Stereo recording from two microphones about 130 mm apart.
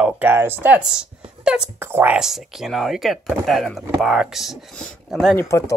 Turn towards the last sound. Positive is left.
turn(degrees=20)  # may be behind; listen again after turning